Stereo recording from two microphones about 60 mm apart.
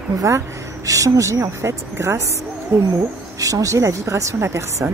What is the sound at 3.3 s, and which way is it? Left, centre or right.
Speech, right.